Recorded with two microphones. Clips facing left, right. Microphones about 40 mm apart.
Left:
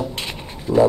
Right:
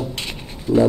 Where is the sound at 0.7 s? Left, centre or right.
Centre.